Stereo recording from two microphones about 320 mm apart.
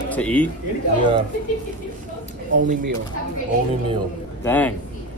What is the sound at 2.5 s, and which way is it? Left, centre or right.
Speech, right.